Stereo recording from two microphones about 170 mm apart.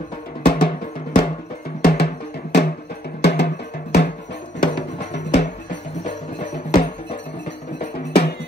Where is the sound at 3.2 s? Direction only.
85° left.